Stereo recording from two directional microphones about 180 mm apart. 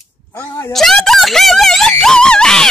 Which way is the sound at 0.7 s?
Centre (ahead or behind).